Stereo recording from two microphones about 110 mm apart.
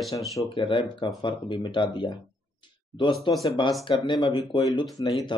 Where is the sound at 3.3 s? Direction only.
45° left (ahead or behind).